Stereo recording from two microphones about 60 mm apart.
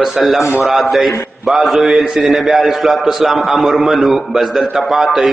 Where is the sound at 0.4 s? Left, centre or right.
Left.